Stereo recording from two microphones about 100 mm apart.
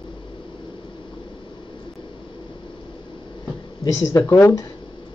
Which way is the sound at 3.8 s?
30° left (ahead or behind).